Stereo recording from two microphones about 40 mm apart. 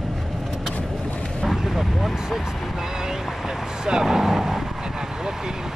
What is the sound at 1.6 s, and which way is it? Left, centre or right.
Vehicle, centre.